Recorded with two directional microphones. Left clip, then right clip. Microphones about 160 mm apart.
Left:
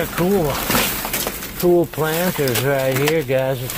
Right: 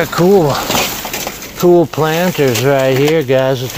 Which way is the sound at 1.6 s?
40° right (ahead or behind).